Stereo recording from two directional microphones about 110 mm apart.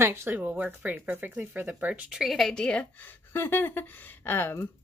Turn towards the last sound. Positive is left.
turn(degrees=20)  # may be behind; listen again after turning